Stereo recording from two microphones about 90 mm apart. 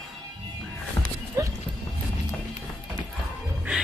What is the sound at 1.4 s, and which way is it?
Clip-clop, 35° right (ahead or behind).